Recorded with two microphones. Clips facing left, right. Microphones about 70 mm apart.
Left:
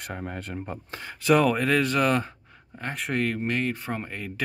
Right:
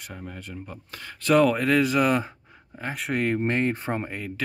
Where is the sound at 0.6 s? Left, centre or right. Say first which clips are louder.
Left 4 dB; left.